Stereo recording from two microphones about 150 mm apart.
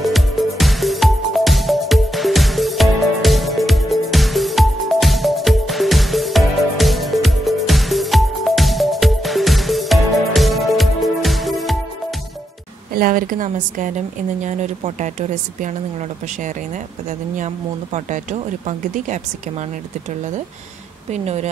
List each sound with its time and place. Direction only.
0.0 s music: centre (ahead or behind)
12.9 s a woman's voice: 70° right (ahead or behind); by 15.7 s 55° right (ahead or behind)
17.9 s speech: 50° right (ahead or behind)
21.1 s speech: 45° right (ahead or behind)